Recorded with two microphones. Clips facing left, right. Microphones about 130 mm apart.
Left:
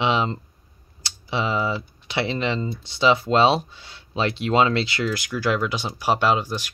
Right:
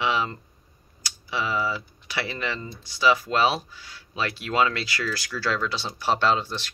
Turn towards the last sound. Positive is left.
turn(degrees=10)  # may be behind; listen again after turning